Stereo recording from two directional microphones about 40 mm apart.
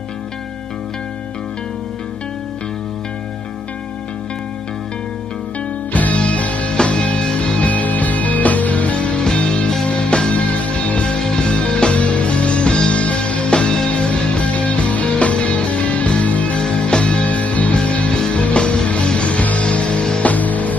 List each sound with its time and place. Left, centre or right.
5.9 s music: left
16.6 s music: left
20.2 s music: left